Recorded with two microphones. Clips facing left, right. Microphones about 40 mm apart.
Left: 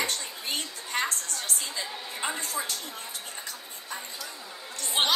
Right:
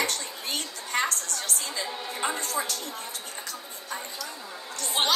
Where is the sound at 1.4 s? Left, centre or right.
Centre.